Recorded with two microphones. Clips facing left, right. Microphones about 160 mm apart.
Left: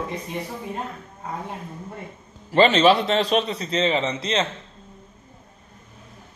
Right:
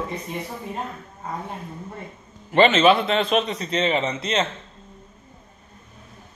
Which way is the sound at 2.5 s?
35° left (ahead or behind).